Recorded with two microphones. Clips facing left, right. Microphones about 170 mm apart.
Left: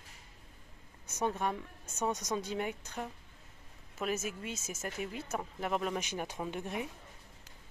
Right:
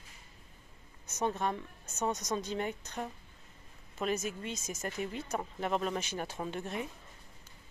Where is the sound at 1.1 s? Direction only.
10° left (ahead or behind).